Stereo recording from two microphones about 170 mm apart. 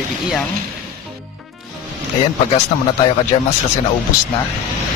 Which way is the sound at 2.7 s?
40° left (ahead or behind).